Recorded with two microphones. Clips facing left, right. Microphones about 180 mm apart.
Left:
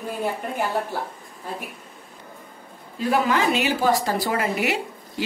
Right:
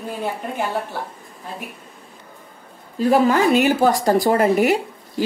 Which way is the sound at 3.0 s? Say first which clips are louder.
Right 6 dB; 40° right (ahead or behind).